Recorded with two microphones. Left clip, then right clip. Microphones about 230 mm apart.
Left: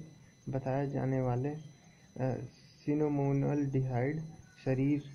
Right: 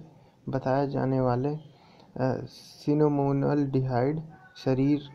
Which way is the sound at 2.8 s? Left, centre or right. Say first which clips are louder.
Right 8 dB; right.